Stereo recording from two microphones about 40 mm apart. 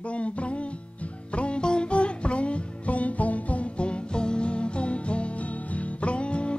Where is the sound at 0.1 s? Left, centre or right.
Left.